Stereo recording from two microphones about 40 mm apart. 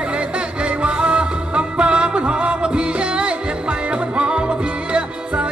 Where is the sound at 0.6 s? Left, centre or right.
Right.